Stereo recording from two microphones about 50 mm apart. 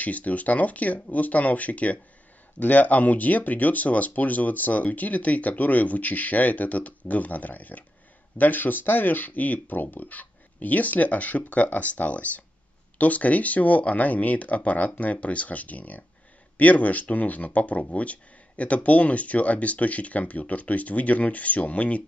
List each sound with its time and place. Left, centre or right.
0.0 s speech: left